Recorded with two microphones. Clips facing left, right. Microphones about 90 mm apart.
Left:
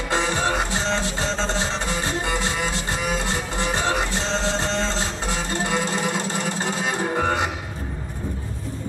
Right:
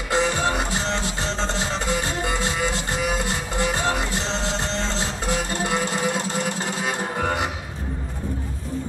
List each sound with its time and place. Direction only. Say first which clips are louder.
0.1 s music: right 1 dB; 25° left (ahead or behind)
2.2 s music: even; 20° right (ahead or behind)
3.5 s music: even; 25° left (ahead or behind)
6.6 s music: left 2 dB; 25° left (ahead or behind)